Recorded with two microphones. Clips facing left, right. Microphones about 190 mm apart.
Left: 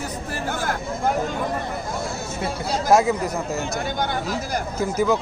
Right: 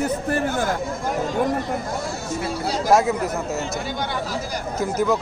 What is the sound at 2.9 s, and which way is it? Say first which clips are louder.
Speech: left 1 dB; centre (ahead or behind).